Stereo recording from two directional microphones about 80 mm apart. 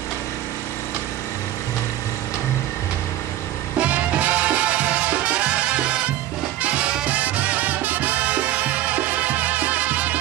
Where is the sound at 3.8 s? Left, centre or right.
Centre.